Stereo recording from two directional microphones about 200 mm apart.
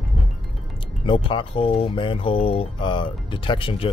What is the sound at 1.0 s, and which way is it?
Speech, 25° left (ahead or behind).